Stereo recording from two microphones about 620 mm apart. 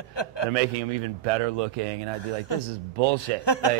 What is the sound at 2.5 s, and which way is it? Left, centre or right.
Speech, left.